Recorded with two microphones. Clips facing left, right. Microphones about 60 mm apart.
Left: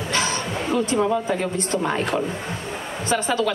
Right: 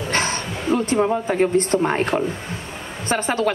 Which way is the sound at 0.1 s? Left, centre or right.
Right.